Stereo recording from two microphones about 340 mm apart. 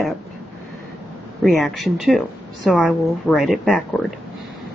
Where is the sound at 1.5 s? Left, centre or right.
Centre.